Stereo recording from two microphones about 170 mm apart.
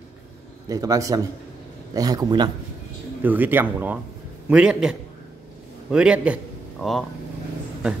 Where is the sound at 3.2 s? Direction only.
10° right (ahead or behind).